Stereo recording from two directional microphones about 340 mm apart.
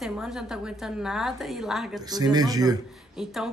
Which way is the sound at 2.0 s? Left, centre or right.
Centre.